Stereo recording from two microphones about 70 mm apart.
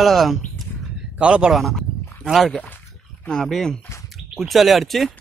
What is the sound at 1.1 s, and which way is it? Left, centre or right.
Speech, centre.